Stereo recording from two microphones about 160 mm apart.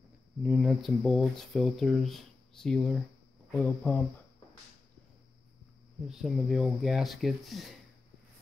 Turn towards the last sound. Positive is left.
turn(degrees=0)  # may be behind; listen again after turning